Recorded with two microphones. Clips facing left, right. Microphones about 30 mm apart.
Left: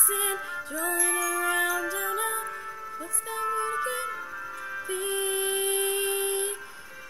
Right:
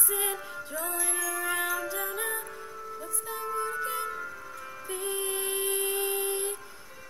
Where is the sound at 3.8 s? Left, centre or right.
Centre.